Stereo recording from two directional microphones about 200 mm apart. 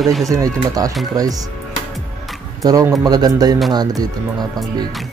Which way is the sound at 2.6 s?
15° right (ahead or behind).